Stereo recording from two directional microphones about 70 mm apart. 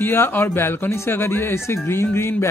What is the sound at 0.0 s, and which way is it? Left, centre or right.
Speech, left.